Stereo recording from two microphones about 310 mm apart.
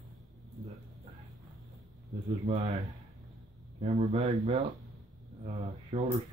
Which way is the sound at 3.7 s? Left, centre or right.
Right.